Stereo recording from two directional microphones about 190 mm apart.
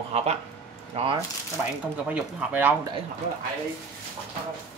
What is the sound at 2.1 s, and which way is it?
Speech, 5° right (ahead or behind).